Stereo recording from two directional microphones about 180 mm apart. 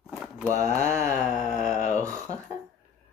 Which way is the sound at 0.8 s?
15° right (ahead or behind).